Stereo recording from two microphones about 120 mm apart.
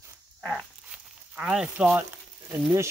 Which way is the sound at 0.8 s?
10° right (ahead or behind).